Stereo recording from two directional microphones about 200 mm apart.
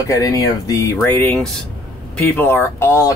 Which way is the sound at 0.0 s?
15° left (ahead or behind).